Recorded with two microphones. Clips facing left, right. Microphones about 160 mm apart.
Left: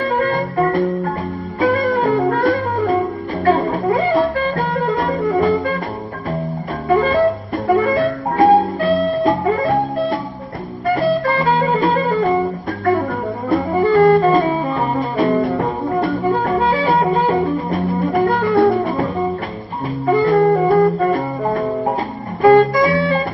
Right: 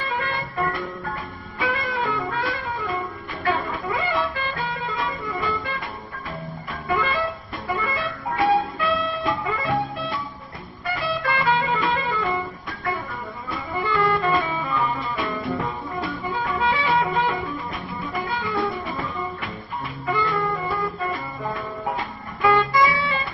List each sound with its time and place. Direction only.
0.0 s music: 45° left (ahead or behind)
6.9 s music: 40° left (ahead or behind)